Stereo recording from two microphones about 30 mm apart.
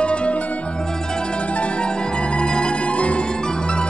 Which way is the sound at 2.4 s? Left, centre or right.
Left.